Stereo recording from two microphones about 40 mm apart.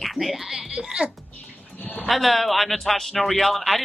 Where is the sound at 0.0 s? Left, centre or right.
Centre.